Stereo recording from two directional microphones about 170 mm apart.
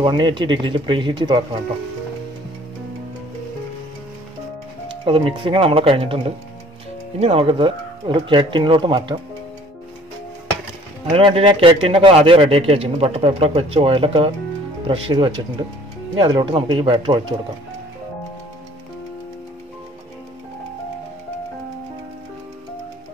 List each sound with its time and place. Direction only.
0.0 s speech: 25° right (ahead or behind)
5.0 s a man's voice: 30° right (ahead or behind)
11.1 s a man's voice: 30° right (ahead or behind)